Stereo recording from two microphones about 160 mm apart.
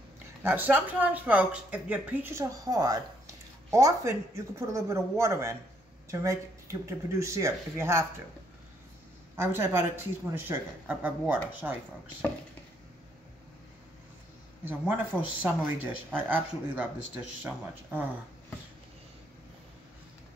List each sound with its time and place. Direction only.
0.4 s speech: 10° right (ahead or behind)
9.4 s speech: 15° right (ahead or behind)
14.6 s speech: 10° right (ahead or behind)